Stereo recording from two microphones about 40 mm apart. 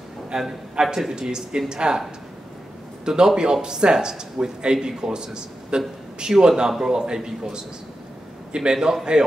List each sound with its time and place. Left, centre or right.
0.3 s a man's voice: centre
3.1 s a man's voice: centre
8.5 s a man's voice: right
8.7 s a man's voice: centre